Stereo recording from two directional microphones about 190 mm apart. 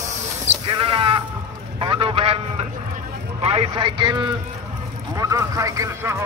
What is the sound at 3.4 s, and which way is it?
Speech, 30° right (ahead or behind).